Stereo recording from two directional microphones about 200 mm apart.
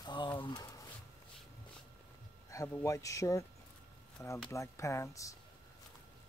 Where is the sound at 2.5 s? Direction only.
15° left (ahead or behind).